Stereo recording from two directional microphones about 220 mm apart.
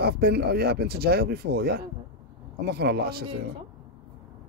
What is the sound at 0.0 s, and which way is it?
Speech, 45° right (ahead or behind).